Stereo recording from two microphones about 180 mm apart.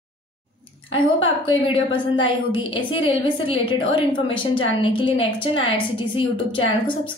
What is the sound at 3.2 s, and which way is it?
A woman's voice, 30° left (ahead or behind).